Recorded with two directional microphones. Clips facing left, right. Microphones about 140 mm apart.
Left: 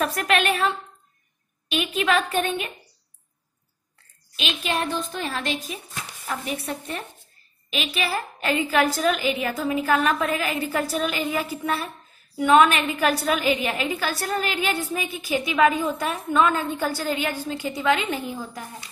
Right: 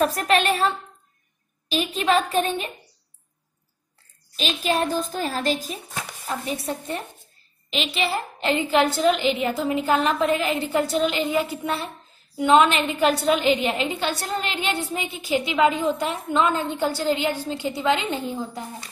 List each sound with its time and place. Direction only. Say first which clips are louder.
0.3 s a woman's voice: even; 35° right (ahead or behind)
2.0 s a woman's voice: right 2 dB; 30° right (ahead or behind)
4.4 s a woman's voice: right 3 dB; 35° right (ahead or behind)